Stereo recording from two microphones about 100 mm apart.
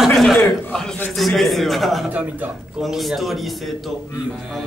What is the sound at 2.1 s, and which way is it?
Speech, 10° right (ahead or behind).